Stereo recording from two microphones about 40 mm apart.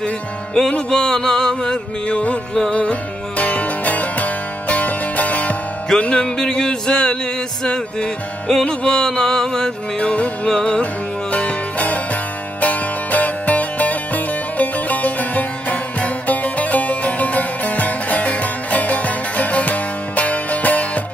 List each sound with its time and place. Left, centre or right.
0.6 s music: centre
2.7 s music: left
5.9 s a sound: left
7.6 s music: left
9.9 s music: left
11.3 s music: left